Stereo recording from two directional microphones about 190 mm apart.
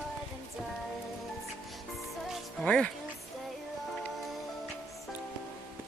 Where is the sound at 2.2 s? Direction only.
5° left (ahead or behind).